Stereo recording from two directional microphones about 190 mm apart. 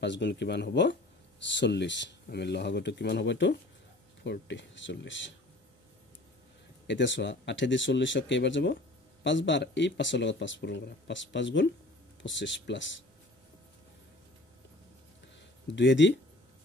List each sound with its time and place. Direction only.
0.0 s speech: 70° left (ahead or behind)
6.9 s speech: 70° left (ahead or behind)
15.7 s speech: 70° left (ahead or behind)